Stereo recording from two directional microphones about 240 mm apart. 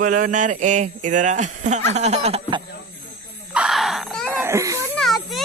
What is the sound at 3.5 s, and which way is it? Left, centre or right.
Wail, centre.